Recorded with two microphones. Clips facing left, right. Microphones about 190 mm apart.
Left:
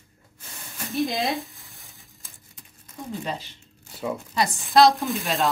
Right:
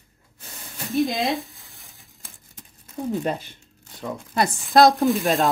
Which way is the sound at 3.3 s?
55° right (ahead or behind).